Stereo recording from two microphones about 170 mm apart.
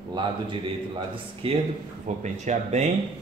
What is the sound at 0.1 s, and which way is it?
A man's voice, 30° right (ahead or behind).